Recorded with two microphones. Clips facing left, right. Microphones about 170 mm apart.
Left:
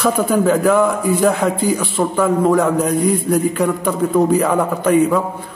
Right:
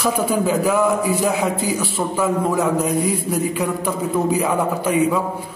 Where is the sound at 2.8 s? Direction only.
55° left (ahead or behind).